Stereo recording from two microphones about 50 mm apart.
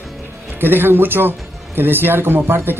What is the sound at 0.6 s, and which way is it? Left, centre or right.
Speech, right.